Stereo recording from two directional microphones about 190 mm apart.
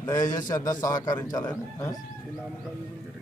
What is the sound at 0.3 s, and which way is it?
A man's voice, 20° left (ahead or behind).